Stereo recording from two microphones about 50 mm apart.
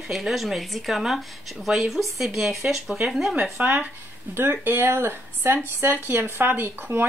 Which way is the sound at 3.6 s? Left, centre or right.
Right.